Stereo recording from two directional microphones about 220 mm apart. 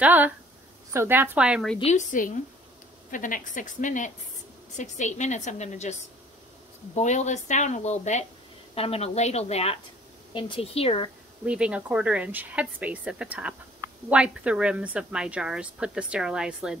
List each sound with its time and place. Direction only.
0.0 s a woman's voice: 10° right (ahead or behind)
1.8 s speech: 30° left (ahead or behind)
7.0 s a woman's voice: 30° left (ahead or behind)
11.4 s a woman's voice: 5° right (ahead or behind)